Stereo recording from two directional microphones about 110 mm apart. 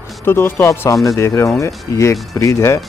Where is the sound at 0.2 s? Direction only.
20° left (ahead or behind).